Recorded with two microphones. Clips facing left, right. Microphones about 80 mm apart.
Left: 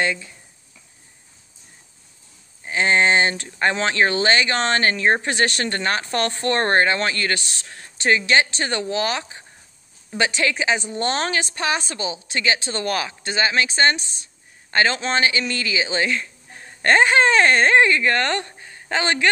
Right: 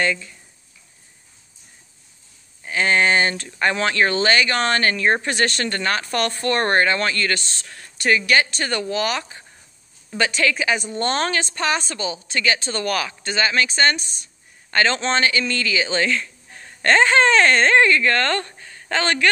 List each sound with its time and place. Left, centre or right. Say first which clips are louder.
0.0 s speech: right 1 dB; left
2.6 s speech: even; left